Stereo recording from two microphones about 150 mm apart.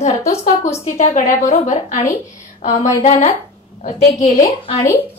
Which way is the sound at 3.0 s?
50° left (ahead or behind).